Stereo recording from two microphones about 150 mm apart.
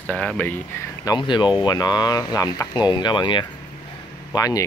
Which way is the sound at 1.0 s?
30° left (ahead or behind).